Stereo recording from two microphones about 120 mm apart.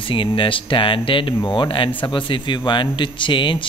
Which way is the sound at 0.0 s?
45° left (ahead or behind).